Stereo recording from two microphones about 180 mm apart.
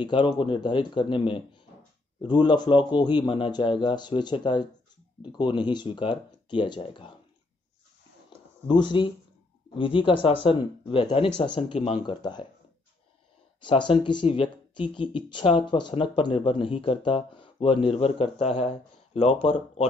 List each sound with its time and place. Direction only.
0.0 s speech: 25° left (ahead or behind)
8.6 s speech: 25° left (ahead or behind)
13.6 s speech: 25° left (ahead or behind)